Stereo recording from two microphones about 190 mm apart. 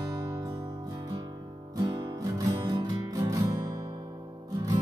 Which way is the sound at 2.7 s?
20° right (ahead or behind).